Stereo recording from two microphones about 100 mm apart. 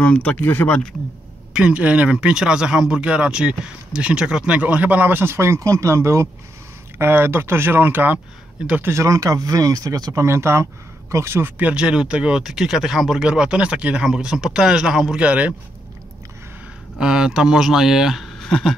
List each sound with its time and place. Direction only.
0.0 s speech: 10° left (ahead or behind)
1.5 s speech: 10° right (ahead or behind)
8.9 s speech: 30° right (ahead or behind)
10.2 s speech: 25° right (ahead or behind)
17.0 s speech: 5° right (ahead or behind)